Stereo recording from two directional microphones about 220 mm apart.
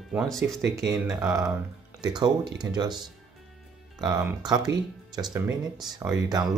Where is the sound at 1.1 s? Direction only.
15° right (ahead or behind).